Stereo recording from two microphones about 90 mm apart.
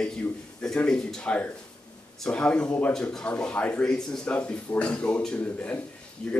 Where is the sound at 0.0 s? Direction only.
10° left (ahead or behind).